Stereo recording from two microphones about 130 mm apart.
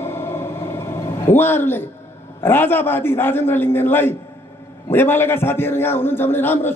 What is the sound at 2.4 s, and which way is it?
A man's voice, 15° left (ahead or behind).